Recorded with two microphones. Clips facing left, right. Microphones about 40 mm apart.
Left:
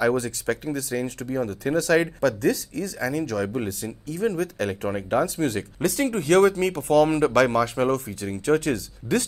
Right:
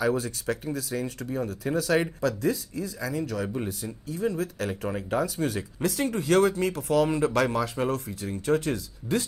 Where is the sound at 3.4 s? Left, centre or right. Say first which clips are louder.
Left 4 dB; left.